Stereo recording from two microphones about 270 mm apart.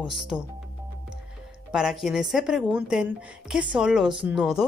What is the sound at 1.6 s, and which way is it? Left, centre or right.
A woman's voice, centre.